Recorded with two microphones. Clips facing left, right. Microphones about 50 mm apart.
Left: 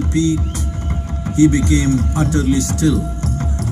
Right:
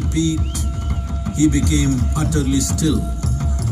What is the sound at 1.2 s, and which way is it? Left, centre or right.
Speech, left.